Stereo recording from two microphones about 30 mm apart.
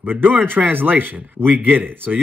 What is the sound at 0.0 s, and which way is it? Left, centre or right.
Speech, right.